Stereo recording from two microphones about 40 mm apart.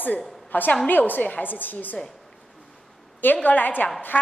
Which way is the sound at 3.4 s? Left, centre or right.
Left.